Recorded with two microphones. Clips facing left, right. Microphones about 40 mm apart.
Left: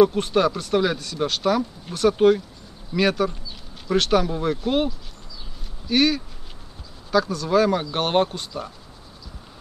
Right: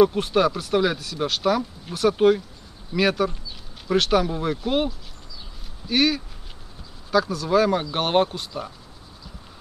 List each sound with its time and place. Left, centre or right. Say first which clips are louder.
0.0 s speech: left 1 dB; centre